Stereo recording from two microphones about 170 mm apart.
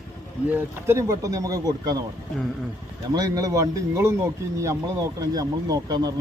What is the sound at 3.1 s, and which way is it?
A man's voice, 20° right (ahead or behind).